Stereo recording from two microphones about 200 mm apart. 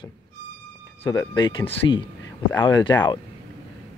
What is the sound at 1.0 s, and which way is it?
Speech, 25° left (ahead or behind).